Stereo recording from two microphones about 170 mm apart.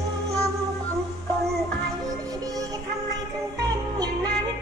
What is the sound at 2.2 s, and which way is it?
Music, 20° right (ahead or behind).